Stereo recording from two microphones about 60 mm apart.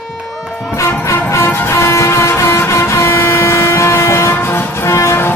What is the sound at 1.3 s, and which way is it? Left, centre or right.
Vehicle, left.